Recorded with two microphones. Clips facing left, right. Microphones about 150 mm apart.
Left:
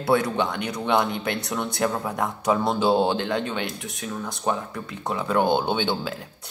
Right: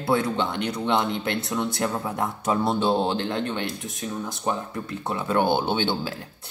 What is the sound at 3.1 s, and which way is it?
Speech, 65° left (ahead or behind).